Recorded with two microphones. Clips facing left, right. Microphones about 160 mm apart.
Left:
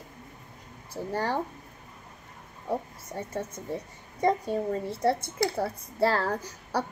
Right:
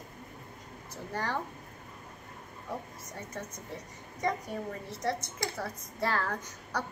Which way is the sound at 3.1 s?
30° left (ahead or behind).